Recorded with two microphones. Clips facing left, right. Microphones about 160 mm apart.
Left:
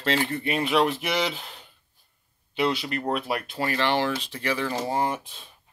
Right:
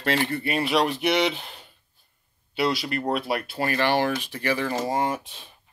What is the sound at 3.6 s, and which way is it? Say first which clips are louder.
Speech: right 2 dB; 50° right (ahead or behind).